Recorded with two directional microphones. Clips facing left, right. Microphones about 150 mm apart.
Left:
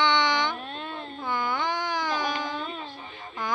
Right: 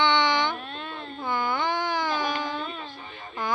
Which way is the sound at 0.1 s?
10° left (ahead or behind).